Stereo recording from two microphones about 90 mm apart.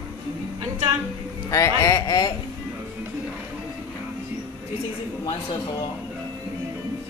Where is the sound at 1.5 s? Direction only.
35° left (ahead or behind).